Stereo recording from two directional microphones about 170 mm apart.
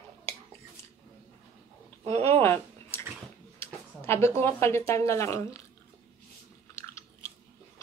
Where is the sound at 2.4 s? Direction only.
15° left (ahead or behind).